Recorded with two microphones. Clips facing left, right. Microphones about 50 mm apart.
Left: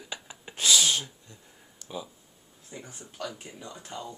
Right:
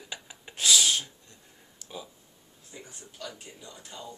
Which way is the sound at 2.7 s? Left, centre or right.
Left.